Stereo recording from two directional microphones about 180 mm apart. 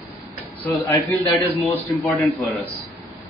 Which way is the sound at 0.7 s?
15° left (ahead or behind).